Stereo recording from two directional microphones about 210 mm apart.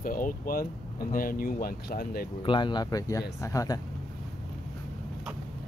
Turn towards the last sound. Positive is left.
turn(degrees=15)  # may be behind; listen again after turning